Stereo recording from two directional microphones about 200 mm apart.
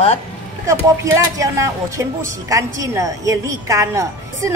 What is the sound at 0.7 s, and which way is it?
Speech, 15° right (ahead or behind).